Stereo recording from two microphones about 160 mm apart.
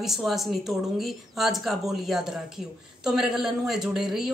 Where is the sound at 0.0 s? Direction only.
Centre (ahead or behind).